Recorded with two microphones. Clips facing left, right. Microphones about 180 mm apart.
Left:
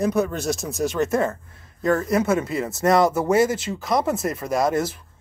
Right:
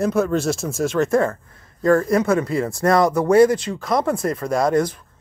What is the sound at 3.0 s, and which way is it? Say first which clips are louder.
Speech: right 5 dB; 5° left (ahead or behind).